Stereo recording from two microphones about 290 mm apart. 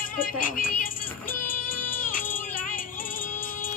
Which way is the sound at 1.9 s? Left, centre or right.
Left.